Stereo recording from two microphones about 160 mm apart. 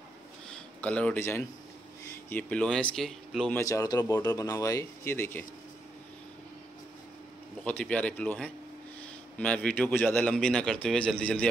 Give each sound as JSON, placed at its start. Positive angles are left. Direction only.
{"t": 0.7, "sound": "a man's voice", "side_deg": 10}
{"t": 3.5, "sound": "speech", "side_deg": 20}
{"t": 7.6, "sound": "a man's voice", "side_deg": 10}